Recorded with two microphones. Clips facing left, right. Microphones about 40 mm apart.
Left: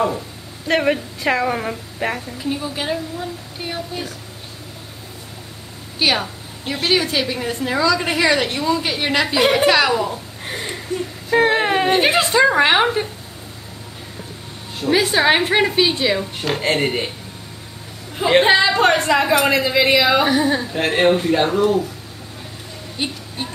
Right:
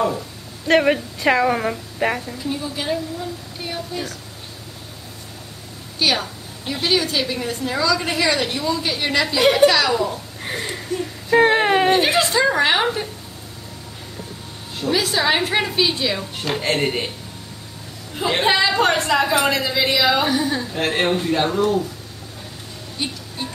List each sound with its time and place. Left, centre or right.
0.7 s a woman's voice: centre
2.6 s speech: centre
5.9 s a woman's voice: centre
10.1 s speech: centre
11.0 s a sound: centre
11.9 s a woman's voice: left
14.9 s a woman's voice: left
16.2 s speech: centre
18.2 s a woman's voice: centre
20.6 s speech: centre
22.9 s a sound: left